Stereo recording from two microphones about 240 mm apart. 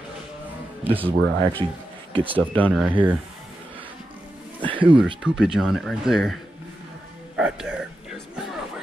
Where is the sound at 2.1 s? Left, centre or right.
Right.